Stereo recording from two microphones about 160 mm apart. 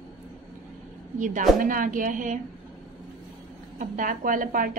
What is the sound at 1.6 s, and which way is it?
Speech, 60° right (ahead or behind).